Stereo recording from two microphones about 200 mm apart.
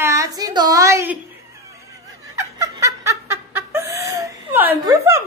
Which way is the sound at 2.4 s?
15° right (ahead or behind).